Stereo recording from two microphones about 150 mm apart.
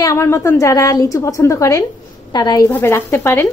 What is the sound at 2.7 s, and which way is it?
Speech, 15° left (ahead or behind).